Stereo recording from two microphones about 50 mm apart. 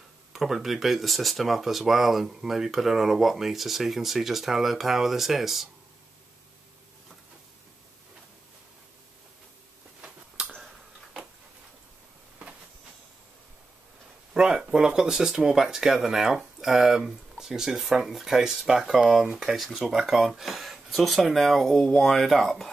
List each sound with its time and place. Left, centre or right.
0.3 s speech: centre
10.0 s a sound: centre
14.3 s speech: centre
19.5 s speech: centre